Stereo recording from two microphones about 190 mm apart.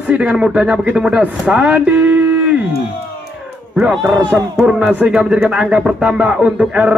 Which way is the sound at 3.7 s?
5° right (ahead or behind).